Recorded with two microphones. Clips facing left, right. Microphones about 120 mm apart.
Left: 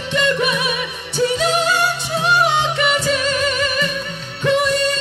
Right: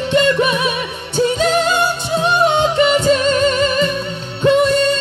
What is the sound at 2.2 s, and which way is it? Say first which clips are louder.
Music: right 3 dB; 30° right (ahead or behind).